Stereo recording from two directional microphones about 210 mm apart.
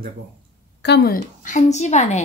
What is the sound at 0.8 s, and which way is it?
A woman's voice, 50° left (ahead or behind).